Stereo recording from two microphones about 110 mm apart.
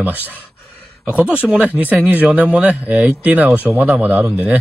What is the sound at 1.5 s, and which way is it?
A man's voice, 15° right (ahead or behind).